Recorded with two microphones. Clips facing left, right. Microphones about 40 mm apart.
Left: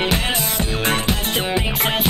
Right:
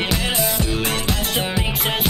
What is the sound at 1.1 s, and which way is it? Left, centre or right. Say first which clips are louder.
Music: left 2 dB; left.